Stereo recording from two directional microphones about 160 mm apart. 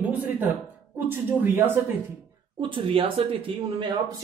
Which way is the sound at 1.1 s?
15° right (ahead or behind).